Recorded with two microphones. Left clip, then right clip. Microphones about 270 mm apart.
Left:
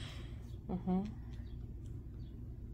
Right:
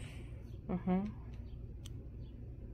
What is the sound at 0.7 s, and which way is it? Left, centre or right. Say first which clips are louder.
Speech: right 2 dB; centre.